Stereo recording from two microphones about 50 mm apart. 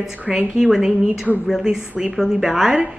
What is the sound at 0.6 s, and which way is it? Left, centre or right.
A woman's voice, centre.